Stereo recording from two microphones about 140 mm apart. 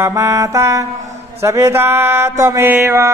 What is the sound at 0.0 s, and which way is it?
Mantra, 20° right (ahead or behind).